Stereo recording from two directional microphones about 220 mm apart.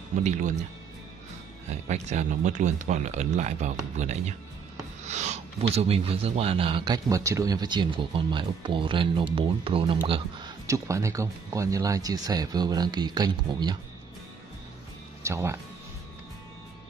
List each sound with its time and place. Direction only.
1.9 s speech: 30° right (ahead or behind)
10.7 s speech: 15° right (ahead or behind)
15.2 s speech: 15° right (ahead or behind)